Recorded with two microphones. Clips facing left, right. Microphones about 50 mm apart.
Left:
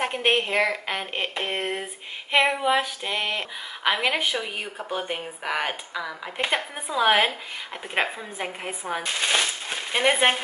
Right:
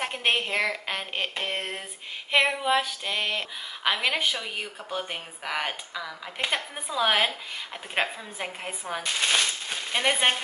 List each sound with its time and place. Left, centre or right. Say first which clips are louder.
0.0 s speech: left 3 dB; centre